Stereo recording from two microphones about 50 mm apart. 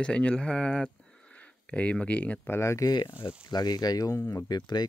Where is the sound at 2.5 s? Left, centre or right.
Left.